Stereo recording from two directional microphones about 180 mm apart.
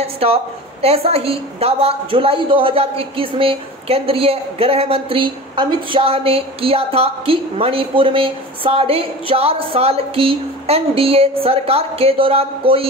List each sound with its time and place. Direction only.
0.0 s a woman's voice: 35° right (ahead or behind)